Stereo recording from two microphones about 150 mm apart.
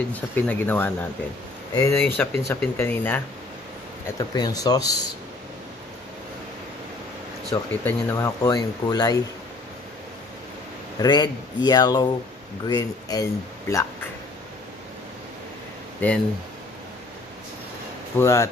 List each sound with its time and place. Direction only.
0.1 s speech: 10° left (ahead or behind)
4.2 s speech: 25° left (ahead or behind)
7.4 s speech: 15° left (ahead or behind)
11.0 s speech: 30° left (ahead or behind)
16.0 s speech: 10° left (ahead or behind)
18.1 s speech: 20° left (ahead or behind)